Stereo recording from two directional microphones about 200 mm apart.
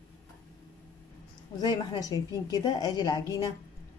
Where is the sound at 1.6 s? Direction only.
20° left (ahead or behind).